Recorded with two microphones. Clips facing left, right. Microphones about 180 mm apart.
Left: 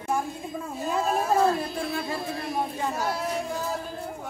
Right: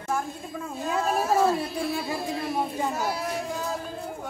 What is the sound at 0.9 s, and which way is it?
Speech, centre (ahead or behind).